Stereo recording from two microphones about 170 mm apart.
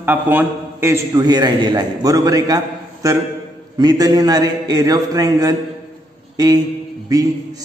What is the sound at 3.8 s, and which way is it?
A man's voice, 20° right (ahead or behind).